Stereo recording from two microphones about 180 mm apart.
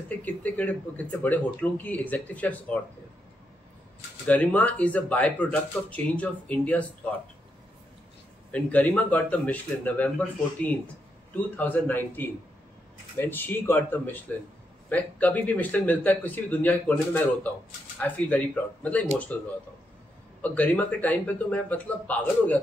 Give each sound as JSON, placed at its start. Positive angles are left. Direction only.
{"t": 0.2, "sound": "speech", "side_deg": 10}
{"t": 4.3, "sound": "speech", "side_deg": 10}
{"t": 8.5, "sound": "speech", "side_deg": 10}